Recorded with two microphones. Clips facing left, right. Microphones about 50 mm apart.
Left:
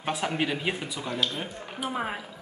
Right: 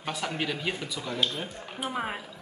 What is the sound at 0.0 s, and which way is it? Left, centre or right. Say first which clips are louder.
Speech: left 3 dB; left.